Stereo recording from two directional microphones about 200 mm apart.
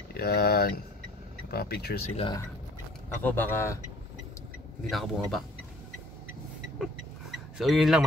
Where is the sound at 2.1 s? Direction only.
25° left (ahead or behind).